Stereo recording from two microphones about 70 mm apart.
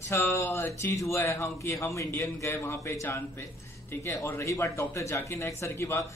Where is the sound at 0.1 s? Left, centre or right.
Left.